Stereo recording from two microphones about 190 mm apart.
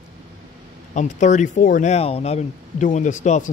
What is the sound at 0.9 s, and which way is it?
Speech, 40° left (ahead or behind).